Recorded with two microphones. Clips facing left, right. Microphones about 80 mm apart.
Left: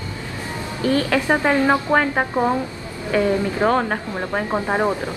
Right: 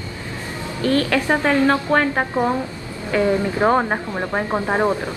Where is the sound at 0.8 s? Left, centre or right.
Centre.